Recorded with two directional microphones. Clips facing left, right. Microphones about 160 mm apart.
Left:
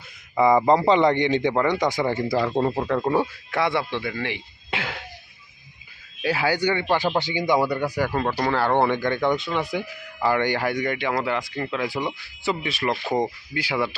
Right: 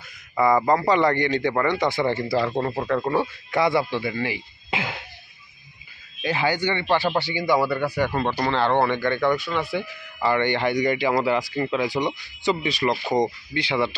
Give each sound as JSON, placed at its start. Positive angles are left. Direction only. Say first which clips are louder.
{"t": 0.4, "sound": "speech", "louder": "left 2 dB", "side_deg": 15}
{"t": 6.2, "sound": "speech", "louder": "left 1 dB", "side_deg": 10}